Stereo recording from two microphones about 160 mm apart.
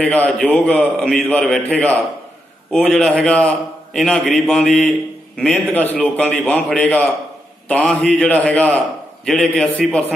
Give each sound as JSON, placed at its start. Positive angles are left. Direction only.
{"t": 0.0, "sound": "a man's voice", "side_deg": 10}